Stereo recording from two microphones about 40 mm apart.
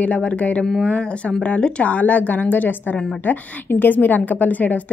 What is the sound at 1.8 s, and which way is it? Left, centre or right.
A woman's voice, left.